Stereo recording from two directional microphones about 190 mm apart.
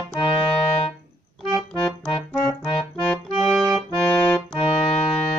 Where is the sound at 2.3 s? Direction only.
5° left (ahead or behind).